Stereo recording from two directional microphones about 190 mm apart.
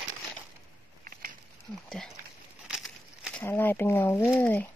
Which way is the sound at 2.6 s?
5° right (ahead or behind).